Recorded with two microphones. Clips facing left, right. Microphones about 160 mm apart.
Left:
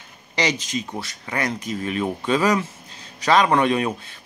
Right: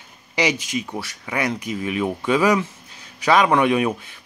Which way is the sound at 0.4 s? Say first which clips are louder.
Right 2 dB; 10° right (ahead or behind).